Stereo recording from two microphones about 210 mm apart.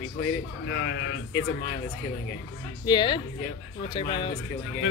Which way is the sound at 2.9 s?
20° left (ahead or behind).